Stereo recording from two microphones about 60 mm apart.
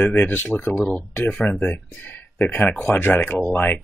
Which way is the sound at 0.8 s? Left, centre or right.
Centre.